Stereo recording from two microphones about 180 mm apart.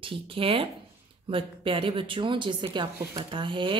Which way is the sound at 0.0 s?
30° right (ahead or behind).